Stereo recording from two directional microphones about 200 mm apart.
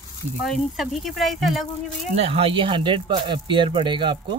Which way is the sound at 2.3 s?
25° right (ahead or behind).